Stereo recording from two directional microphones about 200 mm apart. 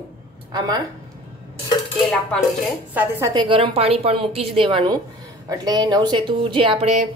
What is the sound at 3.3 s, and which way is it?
A woman's voice, 25° right (ahead or behind).